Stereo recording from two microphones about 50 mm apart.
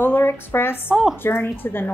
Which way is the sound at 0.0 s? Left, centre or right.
Left.